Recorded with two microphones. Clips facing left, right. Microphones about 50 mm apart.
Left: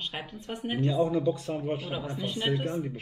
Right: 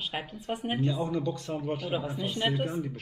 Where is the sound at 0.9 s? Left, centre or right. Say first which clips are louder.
Left 8 dB; centre.